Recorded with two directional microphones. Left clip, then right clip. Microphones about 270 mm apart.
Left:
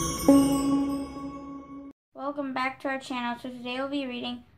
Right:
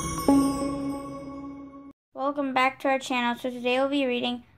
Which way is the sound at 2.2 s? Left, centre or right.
Right.